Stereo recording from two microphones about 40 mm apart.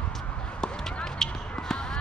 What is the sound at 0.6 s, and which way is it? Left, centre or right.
Basketball bounce, centre.